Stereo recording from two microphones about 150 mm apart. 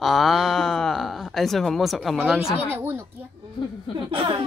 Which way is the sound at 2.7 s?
15° right (ahead or behind).